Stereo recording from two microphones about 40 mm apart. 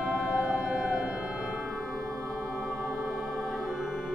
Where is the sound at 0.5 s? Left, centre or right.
Centre.